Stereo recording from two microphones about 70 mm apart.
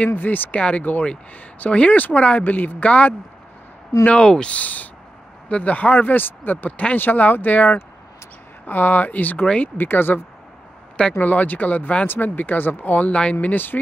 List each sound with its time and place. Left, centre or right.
0.0 s speech: left